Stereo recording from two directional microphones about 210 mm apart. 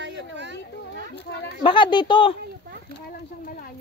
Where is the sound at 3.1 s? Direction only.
45° left (ahead or behind).